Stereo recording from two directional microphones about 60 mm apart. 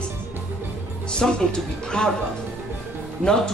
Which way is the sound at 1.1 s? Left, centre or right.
Centre.